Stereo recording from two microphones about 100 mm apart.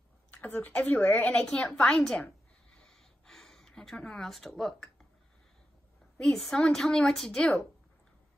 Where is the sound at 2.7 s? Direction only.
5° left (ahead or behind).